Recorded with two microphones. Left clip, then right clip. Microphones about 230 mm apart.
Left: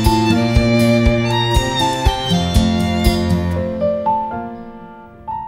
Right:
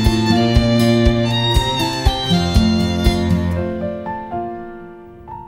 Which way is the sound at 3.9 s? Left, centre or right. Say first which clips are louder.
Left 9 dB; left.